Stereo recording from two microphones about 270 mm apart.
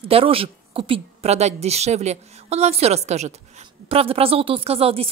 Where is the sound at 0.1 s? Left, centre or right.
Centre.